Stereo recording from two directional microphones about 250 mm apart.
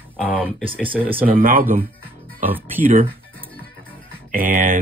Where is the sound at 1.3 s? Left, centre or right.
Right.